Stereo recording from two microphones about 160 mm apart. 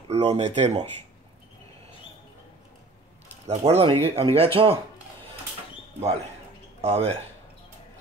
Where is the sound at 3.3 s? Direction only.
40° right (ahead or behind).